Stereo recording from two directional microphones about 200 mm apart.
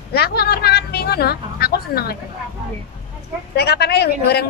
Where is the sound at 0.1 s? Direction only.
50° left (ahead or behind).